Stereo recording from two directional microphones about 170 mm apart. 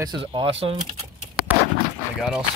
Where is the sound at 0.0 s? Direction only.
30° right (ahead or behind).